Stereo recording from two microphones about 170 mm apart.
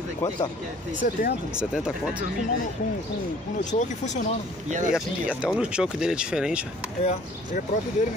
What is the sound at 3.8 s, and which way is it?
Speech, 45° left (ahead or behind).